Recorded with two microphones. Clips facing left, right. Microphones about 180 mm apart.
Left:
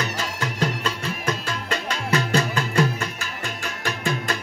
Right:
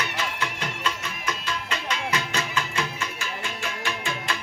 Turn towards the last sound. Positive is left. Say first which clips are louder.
# left 4 dB
turn(degrees=40)  # may be behind; listen again after turning